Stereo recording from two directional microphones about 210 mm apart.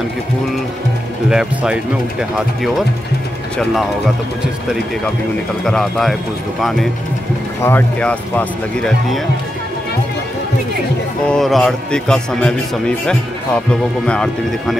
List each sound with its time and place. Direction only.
1.3 s a man's voice: 5° right (ahead or behind)
5.7 s a man's voice: centre (ahead or behind)
11.2 s a man's voice: centre (ahead or behind)